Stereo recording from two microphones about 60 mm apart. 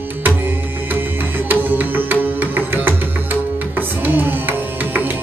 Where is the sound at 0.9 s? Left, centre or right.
Right.